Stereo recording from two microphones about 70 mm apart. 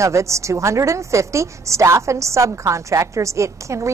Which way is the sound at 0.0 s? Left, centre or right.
Right.